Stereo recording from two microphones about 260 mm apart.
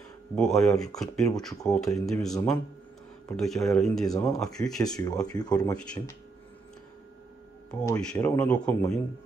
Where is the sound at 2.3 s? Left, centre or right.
Centre.